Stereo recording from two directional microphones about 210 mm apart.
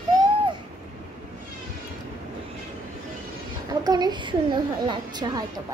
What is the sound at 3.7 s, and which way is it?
A woman's voice, 20° right (ahead or behind).